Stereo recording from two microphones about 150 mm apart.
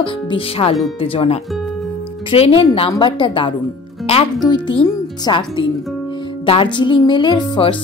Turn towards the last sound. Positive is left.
turn(degrees=30)  # may be behind; listen again after turning